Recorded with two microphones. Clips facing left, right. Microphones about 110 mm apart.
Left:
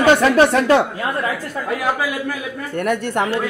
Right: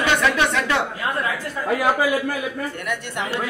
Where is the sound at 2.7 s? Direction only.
45° left (ahead or behind).